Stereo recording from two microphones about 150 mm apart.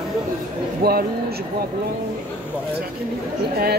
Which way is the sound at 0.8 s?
90° right.